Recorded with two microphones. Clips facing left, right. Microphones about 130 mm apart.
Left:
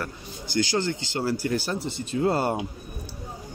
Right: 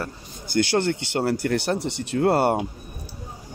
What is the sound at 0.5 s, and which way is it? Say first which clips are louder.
Speech: right 4 dB; 60° right (ahead or behind).